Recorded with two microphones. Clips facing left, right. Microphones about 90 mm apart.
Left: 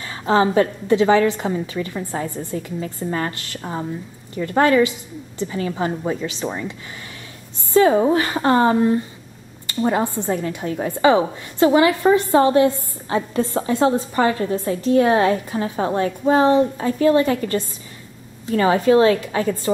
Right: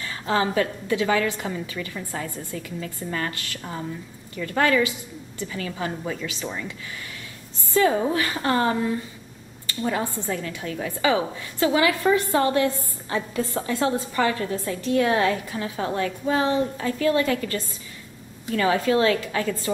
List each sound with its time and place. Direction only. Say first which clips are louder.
0.0 s a woman's voice: left 6 dB; 25° left (ahead or behind)
7.7 s a woman's voice: left 6 dB; 30° left (ahead or behind)